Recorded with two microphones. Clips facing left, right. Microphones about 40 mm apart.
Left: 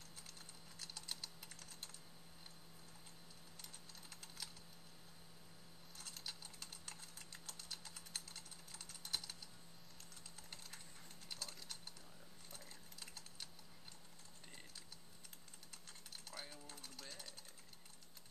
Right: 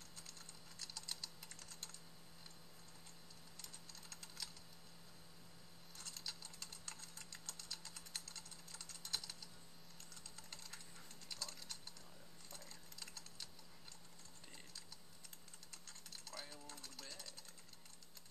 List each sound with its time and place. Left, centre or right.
0.3 s typing: centre
4.1 s typing: centre
6.1 s a sound: centre
10.5 s typing: centre
11.2 s mechanisms: centre
12.4 s sewing machine: centre
16.3 s a sound: centre
17.0 s sewing machine: centre